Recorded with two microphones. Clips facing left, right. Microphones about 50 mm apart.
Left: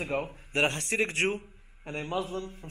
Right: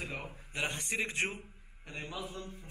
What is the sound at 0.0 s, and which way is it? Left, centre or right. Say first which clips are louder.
A man's voice: left 9 dB; left.